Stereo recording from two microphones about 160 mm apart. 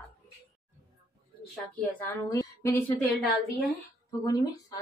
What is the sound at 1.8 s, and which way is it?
Speech, 10° left (ahead or behind).